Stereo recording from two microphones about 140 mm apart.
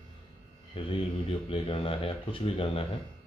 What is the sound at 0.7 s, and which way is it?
Speech, 40° left (ahead or behind).